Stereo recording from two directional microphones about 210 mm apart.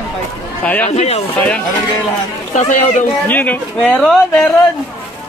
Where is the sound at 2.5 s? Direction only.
35° left (ahead or behind).